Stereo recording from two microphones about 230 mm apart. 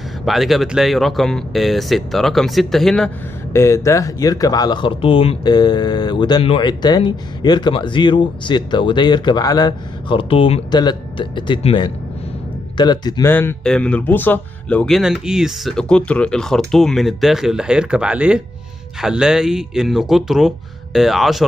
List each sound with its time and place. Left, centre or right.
0.2 s speech: centre
3.5 s speech: centre